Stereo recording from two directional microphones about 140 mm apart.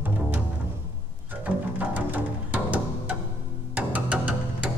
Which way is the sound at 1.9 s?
10° right (ahead or behind).